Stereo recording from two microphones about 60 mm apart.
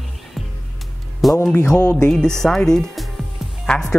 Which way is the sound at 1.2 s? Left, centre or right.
Centre.